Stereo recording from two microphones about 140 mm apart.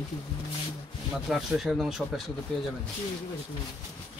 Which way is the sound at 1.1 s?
5° right (ahead or behind).